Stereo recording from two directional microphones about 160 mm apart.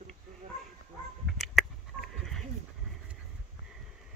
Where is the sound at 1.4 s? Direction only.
Centre (ahead or behind).